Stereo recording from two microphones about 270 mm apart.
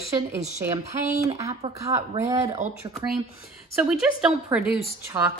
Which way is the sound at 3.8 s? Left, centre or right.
Centre.